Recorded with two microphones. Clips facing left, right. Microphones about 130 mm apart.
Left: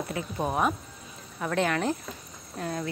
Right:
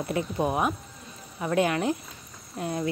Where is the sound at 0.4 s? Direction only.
5° right (ahead or behind).